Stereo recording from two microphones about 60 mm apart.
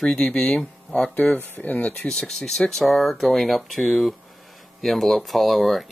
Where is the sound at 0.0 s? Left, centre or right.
Centre.